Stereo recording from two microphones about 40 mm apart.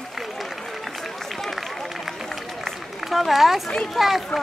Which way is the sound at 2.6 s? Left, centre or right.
Centre.